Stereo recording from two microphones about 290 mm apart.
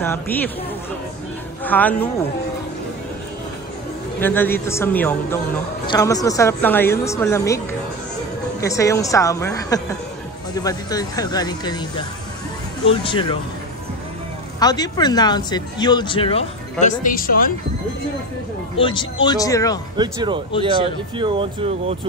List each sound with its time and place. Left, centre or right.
0.0 s speech: centre
1.6 s speech: centre
4.2 s speech: centre
12.8 s speech: centre
14.6 s speech: centre
16.8 s speech: left
18.8 s speech: centre
20.0 s speech: centre